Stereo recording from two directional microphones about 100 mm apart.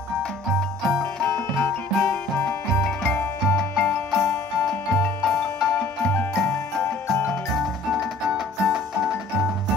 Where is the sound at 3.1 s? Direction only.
20° left (ahead or behind).